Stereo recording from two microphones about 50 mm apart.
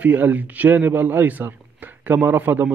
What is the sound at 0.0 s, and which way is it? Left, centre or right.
Speech, right.